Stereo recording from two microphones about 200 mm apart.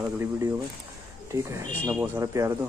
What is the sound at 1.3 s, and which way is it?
Speech, 15° right (ahead or behind).